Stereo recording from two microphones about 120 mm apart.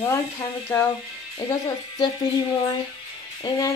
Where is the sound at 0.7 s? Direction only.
20° left (ahead or behind).